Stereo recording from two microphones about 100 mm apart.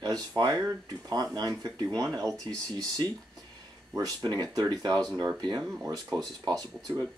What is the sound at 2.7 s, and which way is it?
Speech, 50° right (ahead or behind).